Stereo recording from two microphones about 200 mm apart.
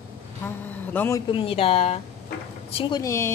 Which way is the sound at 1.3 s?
25° left (ahead or behind).